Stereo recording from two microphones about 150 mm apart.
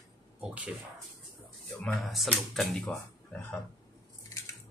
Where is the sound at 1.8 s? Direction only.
5° left (ahead or behind).